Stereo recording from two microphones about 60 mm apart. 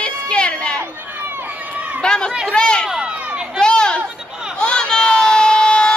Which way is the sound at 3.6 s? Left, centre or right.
Centre.